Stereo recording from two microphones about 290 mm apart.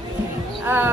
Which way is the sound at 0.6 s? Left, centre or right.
Centre.